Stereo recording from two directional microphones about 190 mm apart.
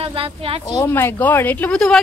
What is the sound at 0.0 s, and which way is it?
Speech, 30° right (ahead or behind).